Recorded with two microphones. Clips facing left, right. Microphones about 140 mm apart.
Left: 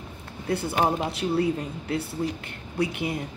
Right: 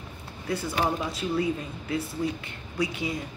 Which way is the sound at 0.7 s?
40° left (ahead or behind).